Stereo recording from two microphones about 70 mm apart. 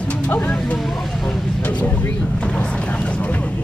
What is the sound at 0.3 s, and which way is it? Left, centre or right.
Music, centre.